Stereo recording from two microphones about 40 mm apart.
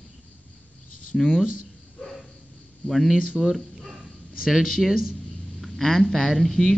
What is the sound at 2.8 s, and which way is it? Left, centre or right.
Speech, centre.